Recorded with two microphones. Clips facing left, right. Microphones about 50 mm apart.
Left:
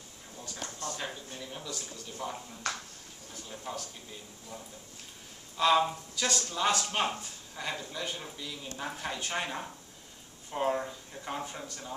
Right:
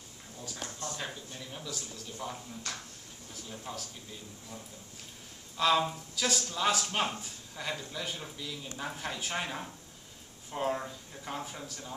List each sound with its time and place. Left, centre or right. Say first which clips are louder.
0.4 s speech: even; centre
2.6 s speech: left 6 dB; left
3.4 s speech: left 2 dB; centre
5.6 s speech: left 2 dB; centre